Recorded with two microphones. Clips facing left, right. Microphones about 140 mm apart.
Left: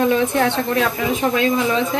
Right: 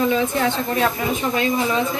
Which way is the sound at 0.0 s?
60° left (ahead or behind).